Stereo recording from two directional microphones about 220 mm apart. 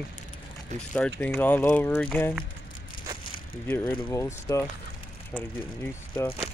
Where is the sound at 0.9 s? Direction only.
5° left (ahead or behind).